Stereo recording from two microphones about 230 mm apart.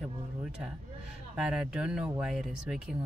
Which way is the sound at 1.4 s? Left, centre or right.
Centre.